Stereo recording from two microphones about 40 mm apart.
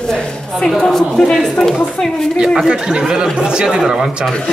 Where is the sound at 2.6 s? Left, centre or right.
Right.